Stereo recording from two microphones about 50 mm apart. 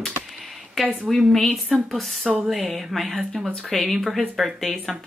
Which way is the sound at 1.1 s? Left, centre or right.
Centre.